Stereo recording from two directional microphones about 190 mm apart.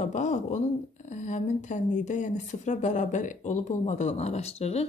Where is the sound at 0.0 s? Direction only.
40° left (ahead or behind).